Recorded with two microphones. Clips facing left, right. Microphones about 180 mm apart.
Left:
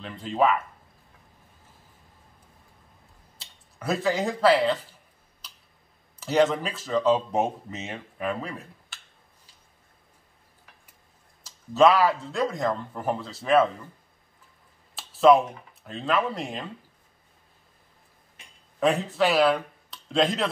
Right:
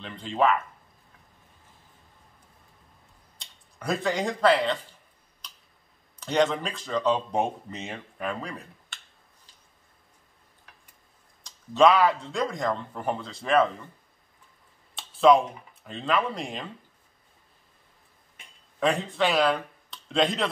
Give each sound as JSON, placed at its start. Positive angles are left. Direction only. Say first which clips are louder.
{"t": 0.0, "sound": "speech", "louder": "left 1 dB", "side_deg": 5}
{"t": 3.3, "sound": "speech", "louder": "left 1 dB", "side_deg": 5}
{"t": 5.4, "sound": "finger snapping", "louder": "right 1 dB", "side_deg": 5}
{"t": 6.1, "sound": "speech", "louder": "left 2 dB", "side_deg": 5}
{"t": 11.4, "sound": "speech", "louder": "left 1 dB", "side_deg": 0}
{"t": 15.0, "sound": "speech", "louder": "left 1 dB", "side_deg": 0}
{"t": 18.8, "sound": "speech", "louder": "left 2 dB", "side_deg": 5}